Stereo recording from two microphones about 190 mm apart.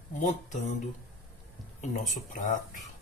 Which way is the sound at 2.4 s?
40° left (ahead or behind).